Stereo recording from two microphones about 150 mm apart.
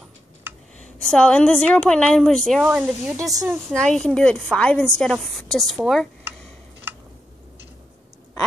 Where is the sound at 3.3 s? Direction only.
20° right (ahead or behind).